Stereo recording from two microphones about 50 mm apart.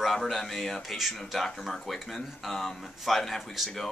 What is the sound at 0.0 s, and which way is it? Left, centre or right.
Speech, centre.